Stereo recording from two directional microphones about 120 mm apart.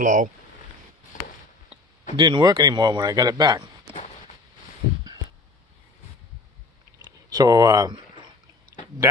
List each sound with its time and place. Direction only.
0.0 s speech: 90° right
1.1 s a sound: 90° left
2.1 s a man's voice: 40° right (ahead or behind)
7.1 s speech: 30° right (ahead or behind)